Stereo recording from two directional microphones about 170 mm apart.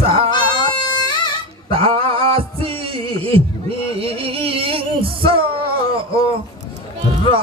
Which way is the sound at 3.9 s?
30° right (ahead or behind).